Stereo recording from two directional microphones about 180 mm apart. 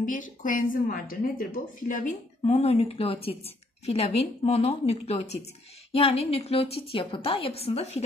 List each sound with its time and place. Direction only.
0.0 s speech: 45° left (ahead or behind)